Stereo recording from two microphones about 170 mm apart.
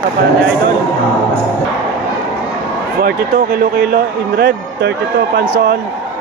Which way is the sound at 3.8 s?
65° right (ahead or behind).